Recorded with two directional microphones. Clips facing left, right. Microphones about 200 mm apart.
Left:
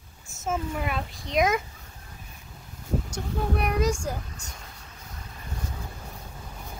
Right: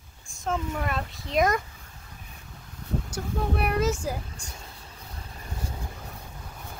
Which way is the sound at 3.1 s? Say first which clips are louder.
Right 2 dB; 5° right (ahead or behind).